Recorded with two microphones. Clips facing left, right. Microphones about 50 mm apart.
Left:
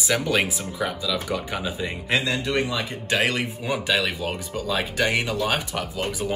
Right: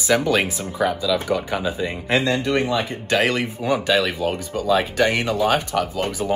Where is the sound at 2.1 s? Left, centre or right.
Right.